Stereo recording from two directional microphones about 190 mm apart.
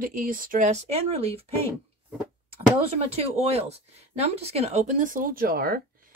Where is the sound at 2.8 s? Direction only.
35° right (ahead or behind); by 5.8 s 50° right (ahead or behind).